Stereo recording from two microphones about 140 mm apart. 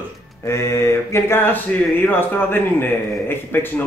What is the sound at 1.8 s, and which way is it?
A man's voice, 10° left (ahead or behind).